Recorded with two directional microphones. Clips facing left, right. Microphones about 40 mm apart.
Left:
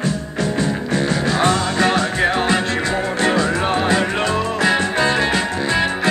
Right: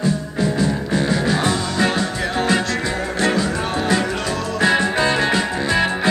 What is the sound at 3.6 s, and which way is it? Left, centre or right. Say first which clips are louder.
Music: left 2 dB; left.